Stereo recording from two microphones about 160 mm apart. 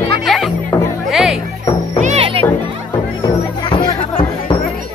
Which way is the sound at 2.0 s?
45° right (ahead or behind).